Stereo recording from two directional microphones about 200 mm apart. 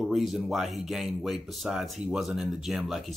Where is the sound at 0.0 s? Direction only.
Centre (ahead or behind).